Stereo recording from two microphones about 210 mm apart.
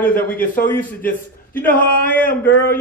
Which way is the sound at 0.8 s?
40° left (ahead or behind).